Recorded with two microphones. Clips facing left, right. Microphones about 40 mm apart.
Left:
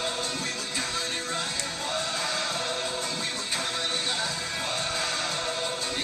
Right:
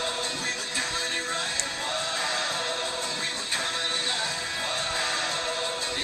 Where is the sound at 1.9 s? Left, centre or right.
Centre.